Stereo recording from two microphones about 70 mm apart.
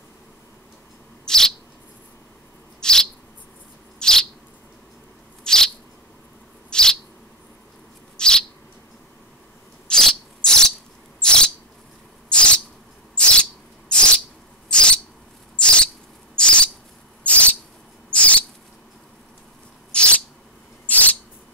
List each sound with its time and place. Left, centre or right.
1.2 s bird: centre
2.8 s owl: centre
4.0 s bird: centre
5.4 s owl: centre
6.7 s bird: centre
8.2 s bird: centre
9.8 s insect: centre
11.1 s a sound: centre
13.1 s insect: centre
14.7 s a sound: centre
15.6 s owl: centre
16.3 s a sound: centre
19.9 s a sound: centre